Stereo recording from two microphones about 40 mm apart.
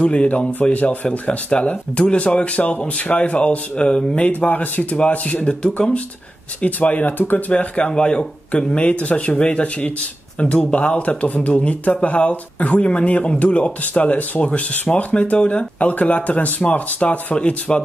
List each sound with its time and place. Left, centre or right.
0.0 s speech: left
4.3 s speech: left
7.5 s speech: left
8.6 s speech: left